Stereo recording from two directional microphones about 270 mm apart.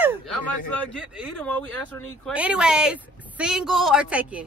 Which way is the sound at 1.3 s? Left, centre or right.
Centre.